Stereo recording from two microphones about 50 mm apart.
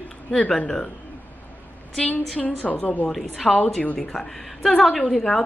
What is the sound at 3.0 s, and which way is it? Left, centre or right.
A woman's voice, centre.